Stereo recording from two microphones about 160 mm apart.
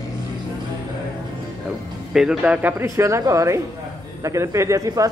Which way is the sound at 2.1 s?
5° right (ahead or behind).